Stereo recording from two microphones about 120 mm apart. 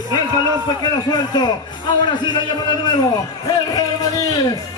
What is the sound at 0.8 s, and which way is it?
A man's voice, 35° left (ahead or behind).